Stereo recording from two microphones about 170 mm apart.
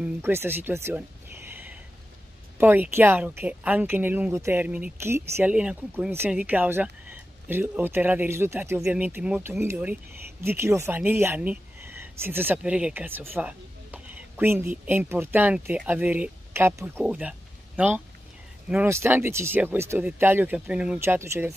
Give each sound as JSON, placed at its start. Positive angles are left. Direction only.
{"t": 0.0, "sound": "speech", "side_deg": -15}
{"t": 1.5, "sound": "a sound", "side_deg": -10}
{"t": 2.6, "sound": "speech", "side_deg": -10}